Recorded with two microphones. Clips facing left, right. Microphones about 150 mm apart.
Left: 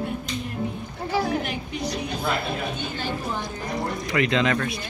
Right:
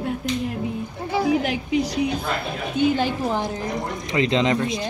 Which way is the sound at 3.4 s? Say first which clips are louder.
Right 3 dB; 25° right (ahead or behind).